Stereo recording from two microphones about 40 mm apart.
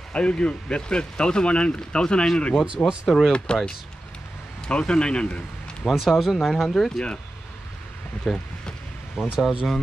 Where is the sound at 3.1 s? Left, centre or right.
Centre.